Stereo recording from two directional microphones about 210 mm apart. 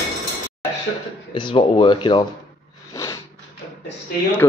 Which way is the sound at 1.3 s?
25° left (ahead or behind).